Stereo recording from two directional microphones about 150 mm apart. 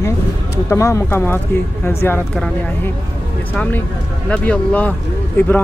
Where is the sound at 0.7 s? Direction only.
20° left (ahead or behind).